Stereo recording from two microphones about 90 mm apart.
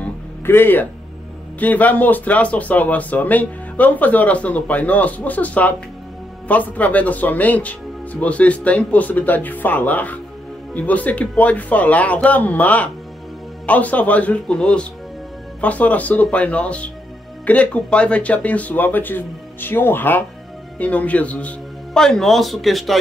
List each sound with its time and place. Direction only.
0.0 s music: 20° left (ahead or behind)
1.6 s speech: 20° left (ahead or behind); by 22.9 s centre (ahead or behind)